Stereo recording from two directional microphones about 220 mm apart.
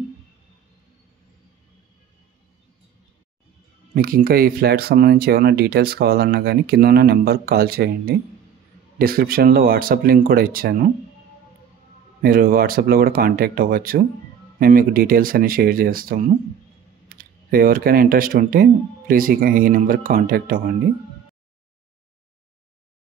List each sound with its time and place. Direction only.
3.9 s speech: 40° right (ahead or behind)
12.2 s speech: 40° right (ahead or behind)